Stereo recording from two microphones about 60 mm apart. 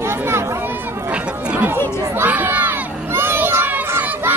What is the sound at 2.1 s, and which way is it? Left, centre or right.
Crowd, right.